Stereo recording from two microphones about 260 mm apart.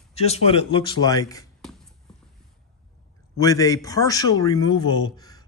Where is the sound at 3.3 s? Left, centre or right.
Centre.